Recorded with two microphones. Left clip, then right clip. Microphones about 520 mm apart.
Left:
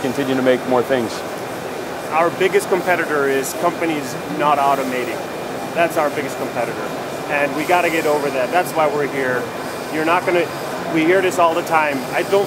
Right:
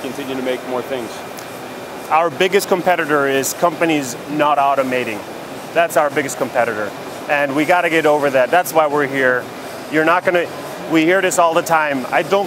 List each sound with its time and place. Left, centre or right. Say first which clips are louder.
2.1 s speech: right 2 dB; right
5.8 s speech: right 2 dB; right
7.2 s speech: right 3 dB; right